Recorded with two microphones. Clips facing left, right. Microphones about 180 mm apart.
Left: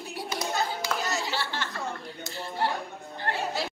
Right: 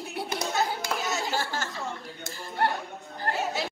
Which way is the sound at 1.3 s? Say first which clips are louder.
Right 2 dB; 45° right (ahead or behind).